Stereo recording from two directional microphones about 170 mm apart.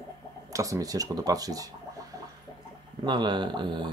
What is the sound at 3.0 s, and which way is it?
Speech, 25° right (ahead or behind).